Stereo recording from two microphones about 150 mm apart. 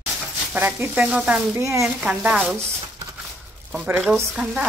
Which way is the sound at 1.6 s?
20° right (ahead or behind).